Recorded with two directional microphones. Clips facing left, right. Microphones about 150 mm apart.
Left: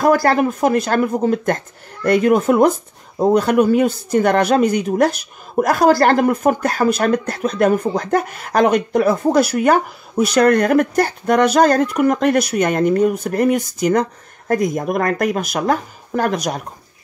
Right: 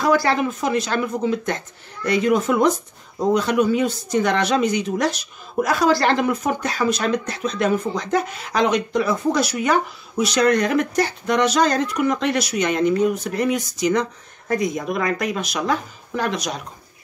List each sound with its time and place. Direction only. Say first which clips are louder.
0.0 s speech: left 4 dB; 50° left (ahead or behind)